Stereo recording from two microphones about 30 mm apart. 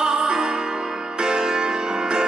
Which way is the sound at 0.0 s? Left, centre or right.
Right.